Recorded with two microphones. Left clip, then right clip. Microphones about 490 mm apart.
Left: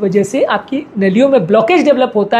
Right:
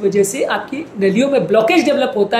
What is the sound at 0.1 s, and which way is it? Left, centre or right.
A woman's voice, left.